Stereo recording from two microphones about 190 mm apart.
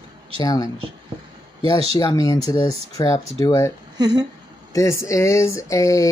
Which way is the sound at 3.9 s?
20° right (ahead or behind).